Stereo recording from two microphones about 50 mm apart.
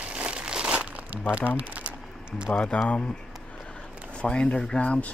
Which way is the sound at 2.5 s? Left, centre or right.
Left.